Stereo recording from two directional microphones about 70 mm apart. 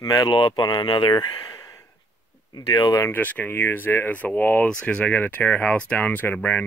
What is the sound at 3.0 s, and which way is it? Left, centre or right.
Speech, left.